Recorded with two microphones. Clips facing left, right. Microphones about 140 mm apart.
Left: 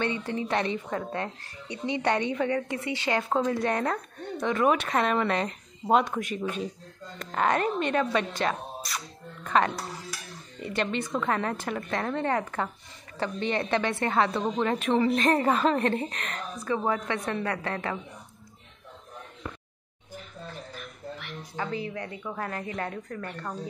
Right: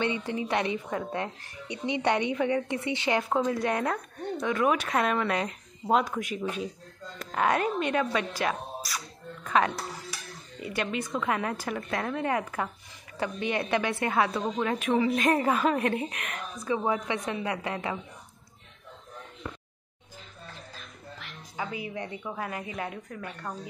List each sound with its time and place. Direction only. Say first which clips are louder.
0.0 s a woman's voice: even; 15° right (ahead or behind)
3.2 s speech: left 1 dB; centre (ahead or behind)
21.5 s a woman's voice: left 2 dB; 10° right (ahead or behind)
22.3 s speech: left 3 dB; 10° right (ahead or behind)